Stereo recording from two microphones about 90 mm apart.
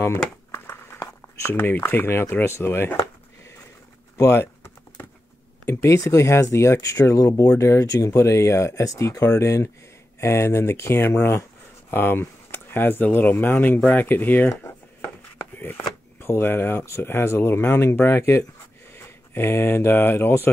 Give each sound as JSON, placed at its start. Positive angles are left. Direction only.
{"t": 0.0, "sound": "computer keyboard", "side_deg": 30}
{"t": 1.5, "sound": "speech", "side_deg": 20}
{"t": 2.6, "sound": "a sound", "side_deg": 25}
{"t": 4.2, "sound": "typing", "side_deg": 30}
{"t": 5.7, "sound": "speech", "side_deg": 35}
{"t": 14.5, "sound": "a sound", "side_deg": 30}
{"t": 15.6, "sound": "speech", "side_deg": 25}